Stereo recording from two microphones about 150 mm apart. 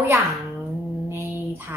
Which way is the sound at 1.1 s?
15° right (ahead or behind).